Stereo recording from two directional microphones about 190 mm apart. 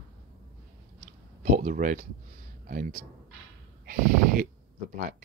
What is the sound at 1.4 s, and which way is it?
Speech, 40° right (ahead or behind).